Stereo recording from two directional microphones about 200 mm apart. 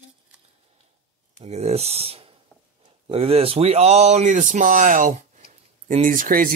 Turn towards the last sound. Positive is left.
turn(degrees=-45)  # may be behind; listen again after turning